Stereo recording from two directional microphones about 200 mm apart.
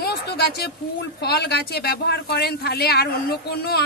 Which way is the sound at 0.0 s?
50° left (ahead or behind).